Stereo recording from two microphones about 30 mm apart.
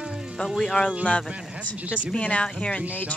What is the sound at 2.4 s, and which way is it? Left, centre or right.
Speech, left.